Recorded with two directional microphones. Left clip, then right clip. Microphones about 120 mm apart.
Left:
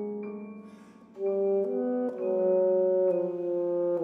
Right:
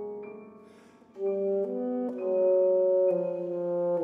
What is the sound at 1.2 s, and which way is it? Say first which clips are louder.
Brass instrument: left 1 dB; 35° right (ahead or behind).